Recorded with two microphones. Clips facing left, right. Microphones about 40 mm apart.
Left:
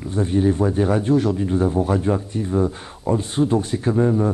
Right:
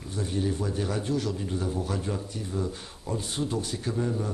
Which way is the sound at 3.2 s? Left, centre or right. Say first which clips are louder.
Left 9 dB; left.